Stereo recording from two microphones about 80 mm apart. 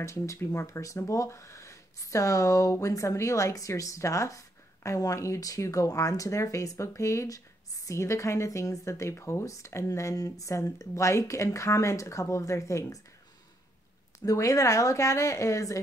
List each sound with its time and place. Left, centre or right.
0.0 s speech: left
14.2 s speech: left